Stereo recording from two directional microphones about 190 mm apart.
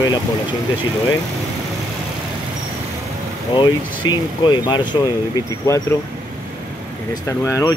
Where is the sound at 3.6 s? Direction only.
25° left (ahead or behind).